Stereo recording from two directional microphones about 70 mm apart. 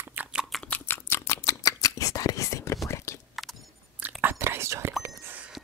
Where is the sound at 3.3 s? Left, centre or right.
Centre.